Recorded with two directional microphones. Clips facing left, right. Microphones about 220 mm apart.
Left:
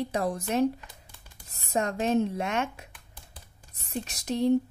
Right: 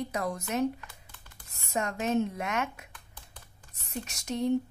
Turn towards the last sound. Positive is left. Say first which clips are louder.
# left 4 dB
turn(degrees=35)  # may be behind; listen again after turning